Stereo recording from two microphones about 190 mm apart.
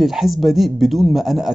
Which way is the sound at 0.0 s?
Centre (ahead or behind).